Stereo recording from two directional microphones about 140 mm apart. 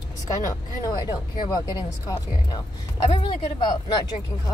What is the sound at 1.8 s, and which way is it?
Speech, 30° left (ahead or behind).